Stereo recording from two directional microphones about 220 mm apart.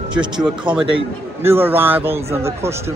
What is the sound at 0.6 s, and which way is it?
Speech, 20° right (ahead or behind).